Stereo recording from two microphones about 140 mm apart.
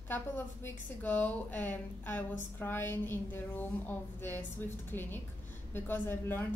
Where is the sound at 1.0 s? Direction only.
10° left (ahead or behind).